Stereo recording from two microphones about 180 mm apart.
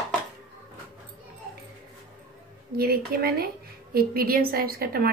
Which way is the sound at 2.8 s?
60° right (ahead or behind).